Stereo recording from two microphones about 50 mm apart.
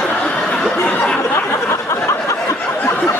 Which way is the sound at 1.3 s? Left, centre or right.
Left.